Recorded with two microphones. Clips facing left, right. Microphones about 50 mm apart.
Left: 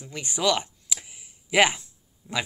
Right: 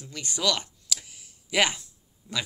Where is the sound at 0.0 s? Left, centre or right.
Left.